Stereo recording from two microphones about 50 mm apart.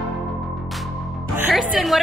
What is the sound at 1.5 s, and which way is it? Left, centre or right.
Music, centre.